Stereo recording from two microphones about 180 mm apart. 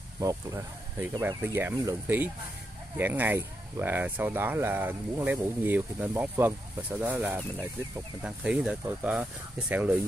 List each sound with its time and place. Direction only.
0.2 s speech: 20° right (ahead or behind)